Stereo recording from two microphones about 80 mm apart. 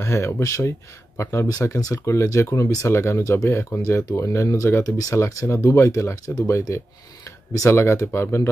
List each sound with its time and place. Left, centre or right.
0.0 s speech: left
1.5 s speech: left